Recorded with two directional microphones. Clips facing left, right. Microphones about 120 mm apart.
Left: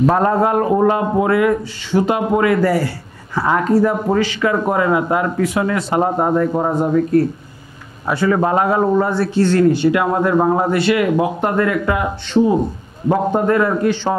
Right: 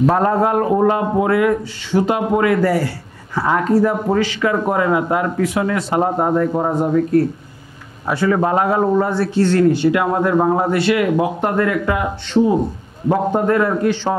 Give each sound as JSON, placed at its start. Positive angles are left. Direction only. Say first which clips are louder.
{"t": 0.0, "sound": "speech", "louder": "left 1 dB", "side_deg": 25}